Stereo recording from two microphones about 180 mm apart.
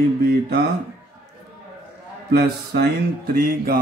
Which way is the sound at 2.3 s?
60° right (ahead or behind).